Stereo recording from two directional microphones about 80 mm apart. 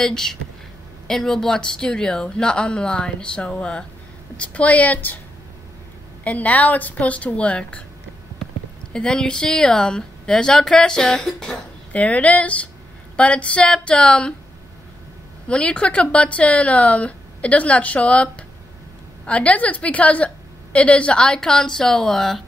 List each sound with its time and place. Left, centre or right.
0.0 s speech: centre
6.2 s speech: centre
8.9 s speech: centre
11.9 s speech: centre
15.4 s speech: centre